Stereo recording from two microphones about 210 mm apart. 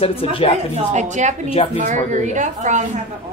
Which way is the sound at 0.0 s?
25° left (ahead or behind).